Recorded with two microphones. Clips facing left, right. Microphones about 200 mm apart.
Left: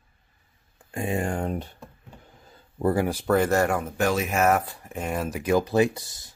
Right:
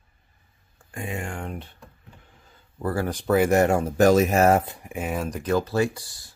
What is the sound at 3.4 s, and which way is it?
Speech, 15° right (ahead or behind).